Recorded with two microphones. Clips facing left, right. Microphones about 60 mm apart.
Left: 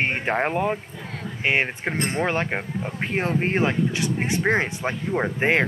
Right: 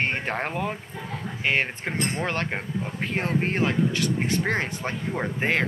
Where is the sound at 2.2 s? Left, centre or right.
Centre.